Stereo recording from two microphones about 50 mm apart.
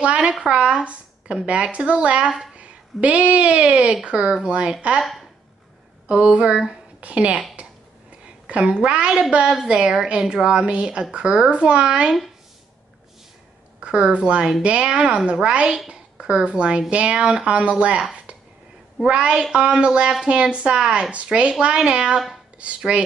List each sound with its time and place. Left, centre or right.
0.0 s a woman's voice: right
6.0 s a woman's voice: right
8.5 s a woman's voice: right
13.7 s a woman's voice: right
19.0 s a woman's voice: right